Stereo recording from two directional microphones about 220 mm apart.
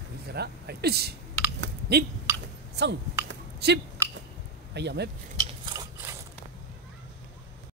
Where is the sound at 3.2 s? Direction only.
50° right (ahead or behind).